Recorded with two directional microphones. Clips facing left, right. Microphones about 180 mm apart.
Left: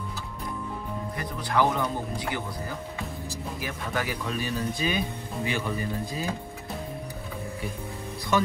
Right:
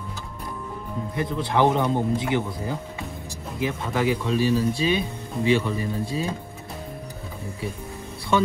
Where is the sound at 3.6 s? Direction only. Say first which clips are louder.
Right 9 dB; 25° right (ahead or behind).